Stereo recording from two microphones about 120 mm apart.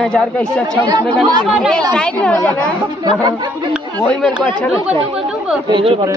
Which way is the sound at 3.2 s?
35° right (ahead or behind).